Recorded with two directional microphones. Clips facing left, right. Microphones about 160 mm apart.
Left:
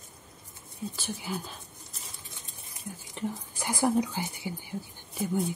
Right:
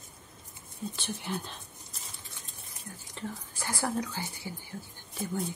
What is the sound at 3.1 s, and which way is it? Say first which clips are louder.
Speech: left 5 dB; 15° left (ahead or behind).